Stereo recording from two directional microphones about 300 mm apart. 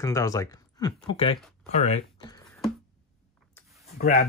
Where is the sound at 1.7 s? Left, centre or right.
Left.